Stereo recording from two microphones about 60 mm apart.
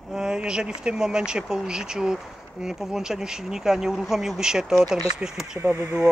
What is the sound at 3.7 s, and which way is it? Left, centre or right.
Speech, centre.